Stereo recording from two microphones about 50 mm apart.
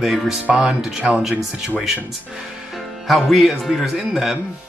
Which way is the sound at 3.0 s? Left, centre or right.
Centre.